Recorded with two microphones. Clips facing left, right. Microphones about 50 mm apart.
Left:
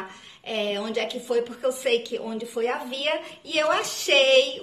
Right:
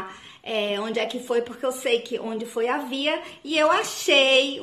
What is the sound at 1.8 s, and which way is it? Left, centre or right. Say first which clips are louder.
Speech: right 2 dB; centre.